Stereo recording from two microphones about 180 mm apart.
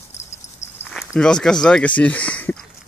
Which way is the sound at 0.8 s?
5° left (ahead or behind).